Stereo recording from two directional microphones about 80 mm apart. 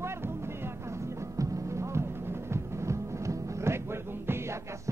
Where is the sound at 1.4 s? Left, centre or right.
Right.